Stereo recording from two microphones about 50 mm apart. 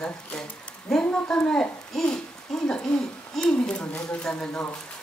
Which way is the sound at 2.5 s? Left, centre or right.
Centre.